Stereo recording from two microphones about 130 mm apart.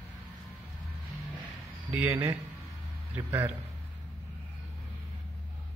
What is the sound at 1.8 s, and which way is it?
A man's voice, 15° right (ahead or behind).